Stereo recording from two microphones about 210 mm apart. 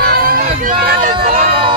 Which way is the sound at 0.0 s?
45° right (ahead or behind).